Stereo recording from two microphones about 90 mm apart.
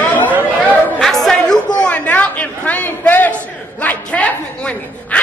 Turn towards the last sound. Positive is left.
turn(degrees=15)  # may be behind; listen again after turning